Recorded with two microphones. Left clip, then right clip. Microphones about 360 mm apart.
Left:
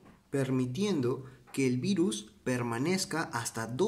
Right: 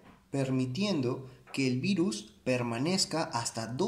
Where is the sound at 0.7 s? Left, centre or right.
Left.